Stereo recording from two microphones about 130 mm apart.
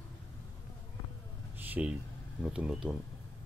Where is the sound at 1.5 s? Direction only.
15° right (ahead or behind).